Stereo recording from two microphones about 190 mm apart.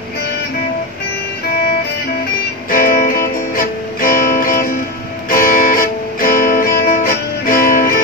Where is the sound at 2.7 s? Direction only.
50° left (ahead or behind).